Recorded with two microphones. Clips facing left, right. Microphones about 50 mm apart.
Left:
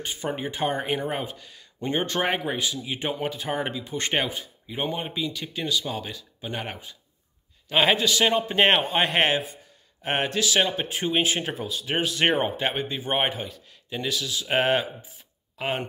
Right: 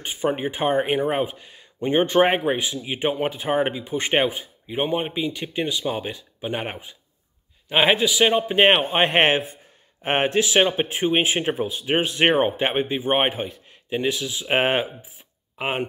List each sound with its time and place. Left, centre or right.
0.0 s a man's voice: centre